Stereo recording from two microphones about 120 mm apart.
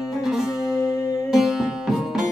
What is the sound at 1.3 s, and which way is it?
Music, 5° right (ahead or behind).